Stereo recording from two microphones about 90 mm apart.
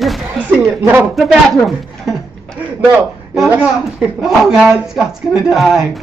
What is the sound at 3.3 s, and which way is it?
A woman's voice, 5° right (ahead or behind).